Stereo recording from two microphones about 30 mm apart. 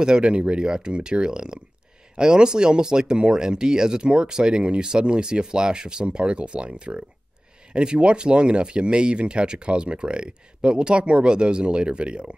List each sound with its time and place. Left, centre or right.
0.0 s speech: right